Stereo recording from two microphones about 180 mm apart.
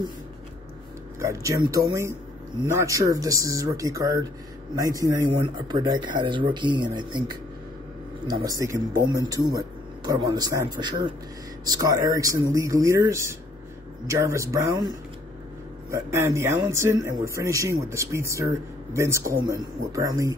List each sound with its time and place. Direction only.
1.2 s a man's voice: 15° right (ahead or behind)
8.3 s a man's voice: 20° right (ahead or behind)